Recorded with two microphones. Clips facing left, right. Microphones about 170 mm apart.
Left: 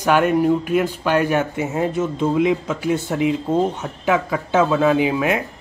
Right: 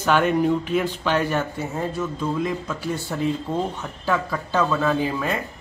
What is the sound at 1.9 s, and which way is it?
Speech, 20° left (ahead or behind).